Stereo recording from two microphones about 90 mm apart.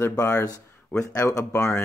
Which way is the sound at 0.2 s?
30° left (ahead or behind).